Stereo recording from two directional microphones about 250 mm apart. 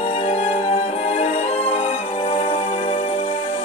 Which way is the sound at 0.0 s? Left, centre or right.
Left.